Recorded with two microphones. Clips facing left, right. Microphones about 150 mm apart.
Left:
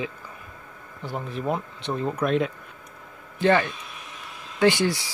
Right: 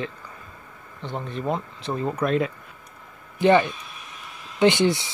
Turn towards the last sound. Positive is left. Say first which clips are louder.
# right 2 dB
turn(degrees=-20)  # may be behind; listen again after turning